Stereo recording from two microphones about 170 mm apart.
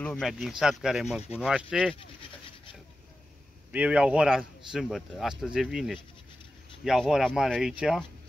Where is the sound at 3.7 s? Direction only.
5° right (ahead or behind).